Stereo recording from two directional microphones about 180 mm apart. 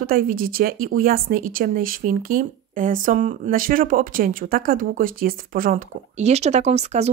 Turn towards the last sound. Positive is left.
turn(degrees=-35)  # may be behind; listen again after turning